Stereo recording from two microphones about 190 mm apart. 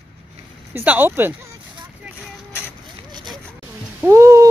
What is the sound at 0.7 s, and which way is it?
Speech, 10° right (ahead or behind).